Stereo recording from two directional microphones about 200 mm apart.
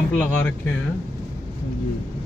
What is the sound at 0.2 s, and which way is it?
Speech, 10° left (ahead or behind).